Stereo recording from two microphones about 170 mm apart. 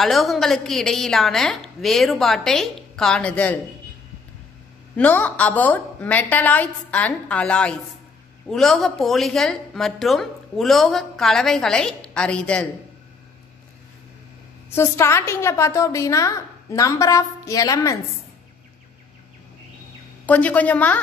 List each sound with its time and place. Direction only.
0.0 s a woman's voice: centre (ahead or behind)
4.9 s a woman's voice: 10° left (ahead or behind)
14.7 s a woman's voice: 15° left (ahead or behind)
20.2 s a woman's voice: 10° left (ahead or behind)